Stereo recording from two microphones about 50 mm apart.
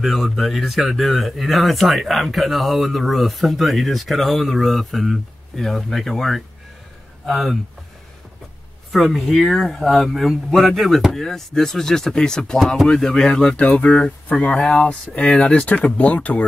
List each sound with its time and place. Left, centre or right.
0.0 s speech: centre
8.9 s speech: centre
11.2 s speech: centre
13.6 s speech: left